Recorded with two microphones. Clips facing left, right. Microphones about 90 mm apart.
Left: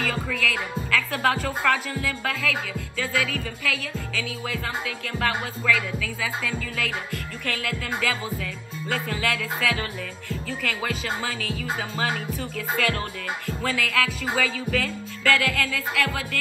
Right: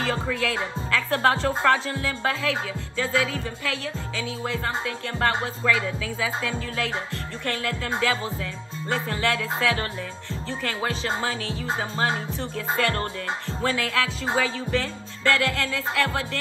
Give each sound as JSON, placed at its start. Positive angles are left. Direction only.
{"t": 0.0, "sound": "speech", "side_deg": -25}